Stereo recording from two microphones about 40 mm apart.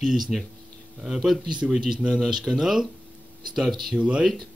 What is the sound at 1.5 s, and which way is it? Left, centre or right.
Speech, centre.